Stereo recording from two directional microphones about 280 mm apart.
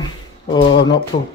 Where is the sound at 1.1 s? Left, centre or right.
Left.